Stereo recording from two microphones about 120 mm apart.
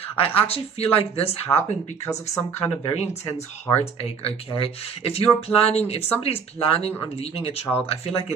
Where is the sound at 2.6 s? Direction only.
60° left (ahead or behind).